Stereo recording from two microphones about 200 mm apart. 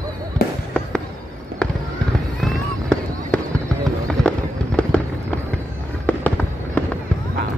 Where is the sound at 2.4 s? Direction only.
Centre (ahead or behind).